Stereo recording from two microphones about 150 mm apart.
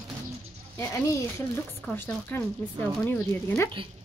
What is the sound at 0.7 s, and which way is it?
Speech, 20° left (ahead or behind).